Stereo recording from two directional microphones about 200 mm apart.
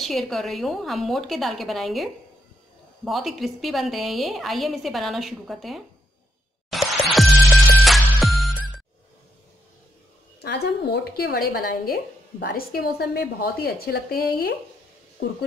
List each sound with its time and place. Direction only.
0.0 s a woman's voice: centre (ahead or behind)
3.1 s a woman's voice: centre (ahead or behind)
6.7 s music: centre (ahead or behind)
10.4 s a woman's voice: 55° left (ahead or behind)